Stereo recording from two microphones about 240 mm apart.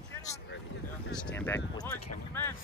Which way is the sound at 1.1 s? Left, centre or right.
Centre.